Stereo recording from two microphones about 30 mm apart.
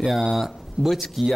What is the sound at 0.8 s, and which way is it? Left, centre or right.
Speech, left.